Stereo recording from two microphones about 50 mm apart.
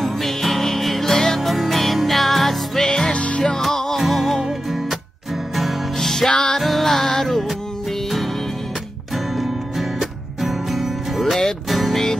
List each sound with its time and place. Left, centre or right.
0.0 s music: centre
3.1 s music: left; by 4.4 s centre
5.9 s music: centre
6.6 s music: centre
9.1 s music: centre